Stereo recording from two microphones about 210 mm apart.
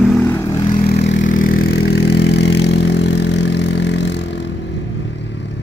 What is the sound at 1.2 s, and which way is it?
Vehicle, 40° left (ahead or behind).